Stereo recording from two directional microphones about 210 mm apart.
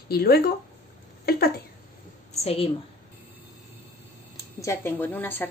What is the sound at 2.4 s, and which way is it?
Speech, 25° left (ahead or behind).